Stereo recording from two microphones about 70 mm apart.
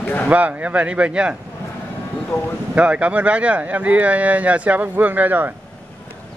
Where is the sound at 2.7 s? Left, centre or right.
Centre.